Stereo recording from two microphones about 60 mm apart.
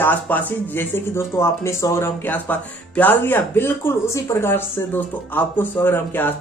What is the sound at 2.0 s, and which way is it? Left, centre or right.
Speech, left.